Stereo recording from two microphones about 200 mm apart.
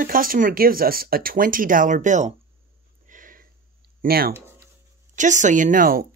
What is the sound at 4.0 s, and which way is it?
Speech, 50° right (ahead or behind).